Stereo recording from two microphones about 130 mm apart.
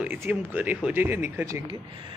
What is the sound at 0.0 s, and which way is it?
Speech, 15° right (ahead or behind).